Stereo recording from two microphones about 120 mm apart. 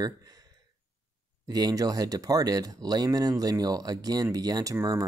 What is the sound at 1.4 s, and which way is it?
Speech, 35° right (ahead or behind).